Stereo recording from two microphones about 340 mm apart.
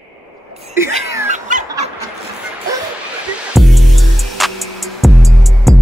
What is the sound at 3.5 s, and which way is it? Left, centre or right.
Music, centre.